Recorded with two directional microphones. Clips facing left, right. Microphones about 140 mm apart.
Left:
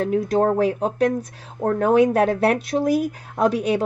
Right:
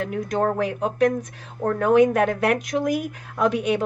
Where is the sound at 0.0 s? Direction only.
35° left (ahead or behind).